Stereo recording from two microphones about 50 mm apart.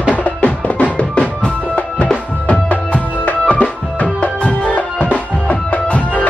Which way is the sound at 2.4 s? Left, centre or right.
Left.